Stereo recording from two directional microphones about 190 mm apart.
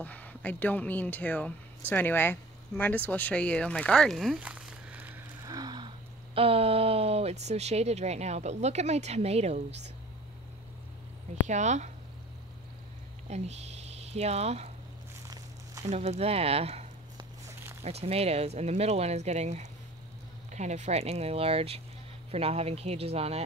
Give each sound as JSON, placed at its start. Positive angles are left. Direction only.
{"t": 0.0, "sound": "speech", "side_deg": 10}
{"t": 5.5, "sound": "speech", "side_deg": -20}
{"t": 11.4, "sound": "speech", "side_deg": -40}
{"t": 13.3, "sound": "speech", "side_deg": -35}
{"t": 15.8, "sound": "speech", "side_deg": -35}
{"t": 17.8, "sound": "speech", "side_deg": -35}